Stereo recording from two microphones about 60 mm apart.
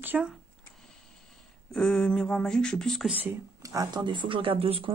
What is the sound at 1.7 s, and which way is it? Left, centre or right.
Speech, centre.